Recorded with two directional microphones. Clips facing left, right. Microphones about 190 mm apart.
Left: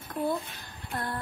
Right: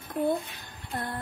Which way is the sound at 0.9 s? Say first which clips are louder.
Even; 20° right (ahead or behind).